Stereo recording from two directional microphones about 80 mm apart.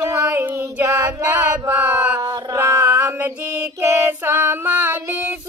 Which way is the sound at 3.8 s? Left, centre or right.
Right.